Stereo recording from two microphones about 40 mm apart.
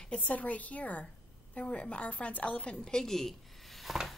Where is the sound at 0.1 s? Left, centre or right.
Left; by 3.1 s centre.